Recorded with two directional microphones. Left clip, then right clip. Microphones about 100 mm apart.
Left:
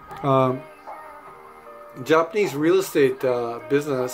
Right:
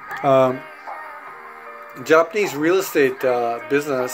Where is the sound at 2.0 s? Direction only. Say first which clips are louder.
Right 3 dB; 35° left (ahead or behind).